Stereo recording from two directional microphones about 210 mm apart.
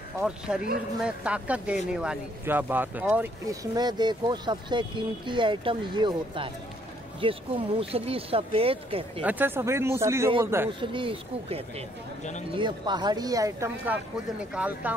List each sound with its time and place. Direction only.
0.2 s speech: 5° right (ahead or behind)
3.7 s speech: 20° right (ahead or behind)
9.2 s speech: 10° right (ahead or behind)
10.7 s speech: 25° right (ahead or behind); by 15.0 s 5° right (ahead or behind)